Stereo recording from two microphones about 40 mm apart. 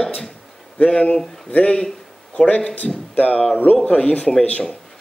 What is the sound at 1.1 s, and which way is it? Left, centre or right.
Speech, centre.